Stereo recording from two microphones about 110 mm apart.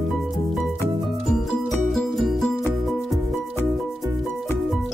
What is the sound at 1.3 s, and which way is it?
Music, 5° left (ahead or behind).